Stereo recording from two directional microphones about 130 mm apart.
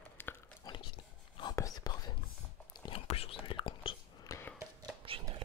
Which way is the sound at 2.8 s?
45° left (ahead or behind).